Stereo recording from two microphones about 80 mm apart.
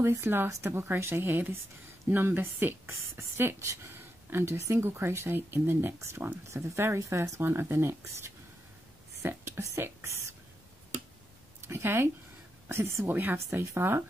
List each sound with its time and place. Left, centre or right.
0.0 s speech: right
11.6 s speech: right